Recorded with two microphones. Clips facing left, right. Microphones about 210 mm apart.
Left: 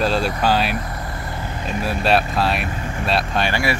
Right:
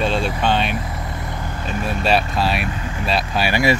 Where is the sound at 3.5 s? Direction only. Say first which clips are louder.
Right 9 dB; 20° right (ahead or behind).